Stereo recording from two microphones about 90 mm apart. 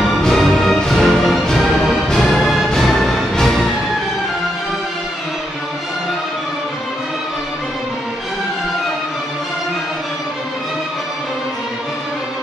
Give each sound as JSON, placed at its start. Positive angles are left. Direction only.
{"t": 0.2, "sound": "music", "side_deg": 5}